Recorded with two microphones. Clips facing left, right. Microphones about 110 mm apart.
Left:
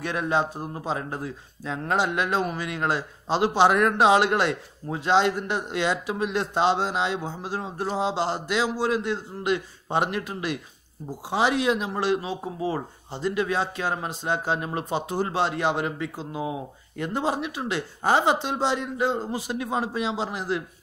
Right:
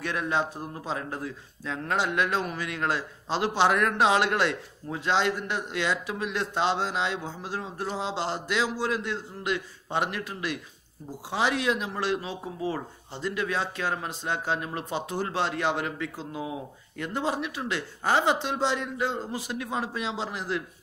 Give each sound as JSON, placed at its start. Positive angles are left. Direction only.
{"t": 0.0, "sound": "speech", "side_deg": 20}